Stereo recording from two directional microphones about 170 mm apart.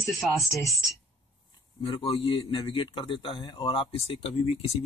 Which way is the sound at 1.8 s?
35° left (ahead or behind).